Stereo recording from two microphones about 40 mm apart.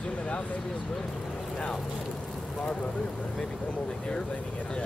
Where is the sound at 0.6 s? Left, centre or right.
Centre.